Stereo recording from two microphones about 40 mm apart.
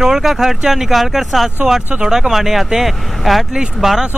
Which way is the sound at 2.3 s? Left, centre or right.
Centre.